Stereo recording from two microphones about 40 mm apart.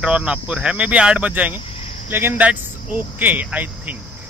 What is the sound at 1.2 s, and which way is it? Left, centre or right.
Speech, right.